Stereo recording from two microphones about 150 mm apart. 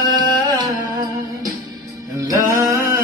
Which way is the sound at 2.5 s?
20° right (ahead or behind).